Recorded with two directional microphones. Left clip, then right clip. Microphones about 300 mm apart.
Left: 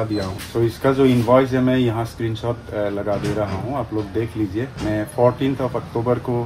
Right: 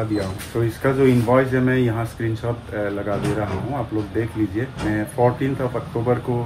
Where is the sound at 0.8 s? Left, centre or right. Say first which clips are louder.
Even; centre.